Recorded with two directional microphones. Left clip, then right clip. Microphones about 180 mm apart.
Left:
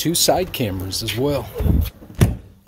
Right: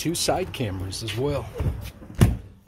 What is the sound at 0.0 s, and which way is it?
Speech, 30° left (ahead or behind).